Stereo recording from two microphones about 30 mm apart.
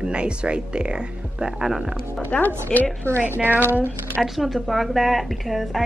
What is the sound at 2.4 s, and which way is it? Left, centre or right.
Speech, left.